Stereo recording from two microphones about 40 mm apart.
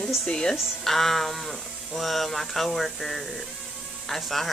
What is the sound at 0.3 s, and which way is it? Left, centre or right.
Speech, centre.